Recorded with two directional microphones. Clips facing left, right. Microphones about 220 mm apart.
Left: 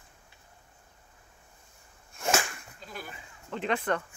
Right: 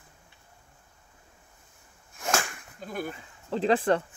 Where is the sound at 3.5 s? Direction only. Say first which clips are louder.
Right 6 dB; 35° right (ahead or behind).